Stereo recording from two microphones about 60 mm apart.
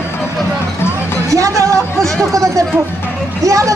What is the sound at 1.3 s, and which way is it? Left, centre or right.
A man's voice, right.